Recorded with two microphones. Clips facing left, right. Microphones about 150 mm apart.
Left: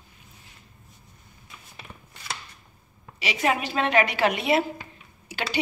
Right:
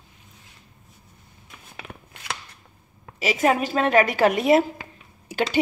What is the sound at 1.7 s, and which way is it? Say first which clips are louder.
Shuffling cards: right 6 dB; 75° right (ahead or behind).